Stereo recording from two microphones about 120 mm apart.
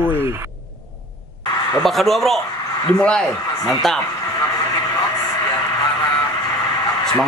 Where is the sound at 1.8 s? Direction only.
Centre (ahead or behind).